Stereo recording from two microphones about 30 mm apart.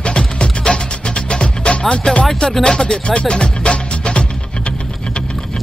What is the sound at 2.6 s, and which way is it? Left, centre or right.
Speech, left.